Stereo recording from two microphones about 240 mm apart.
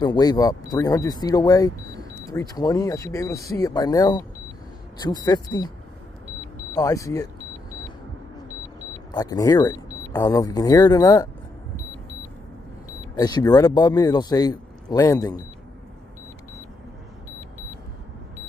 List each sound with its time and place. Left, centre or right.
0.0 s a man's voice: centre
6.7 s a man's voice: centre
9.1 s a man's voice: centre
13.1 s a man's voice: centre